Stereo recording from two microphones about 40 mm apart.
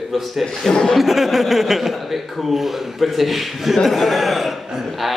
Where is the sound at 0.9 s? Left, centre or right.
Centre.